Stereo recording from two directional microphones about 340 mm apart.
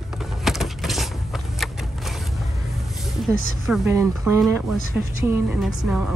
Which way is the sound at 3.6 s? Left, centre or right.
Centre.